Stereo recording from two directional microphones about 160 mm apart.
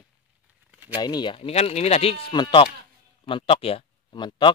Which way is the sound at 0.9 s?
25° left (ahead or behind).